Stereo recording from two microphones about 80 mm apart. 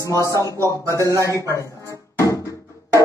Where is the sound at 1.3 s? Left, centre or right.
Left.